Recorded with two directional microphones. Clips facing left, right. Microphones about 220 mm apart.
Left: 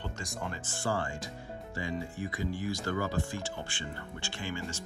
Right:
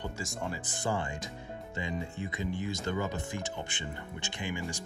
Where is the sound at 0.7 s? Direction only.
20° right (ahead or behind).